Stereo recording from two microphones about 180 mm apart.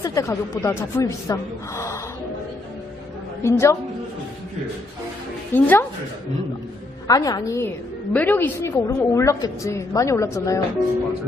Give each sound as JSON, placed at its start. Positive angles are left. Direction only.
{"t": 0.0, "sound": "a woman's voice", "side_deg": 15}
{"t": 3.4, "sound": "a woman's voice", "side_deg": 15}
{"t": 5.5, "sound": "a woman's voice", "side_deg": 10}
{"t": 7.1, "sound": "a woman's voice", "side_deg": 20}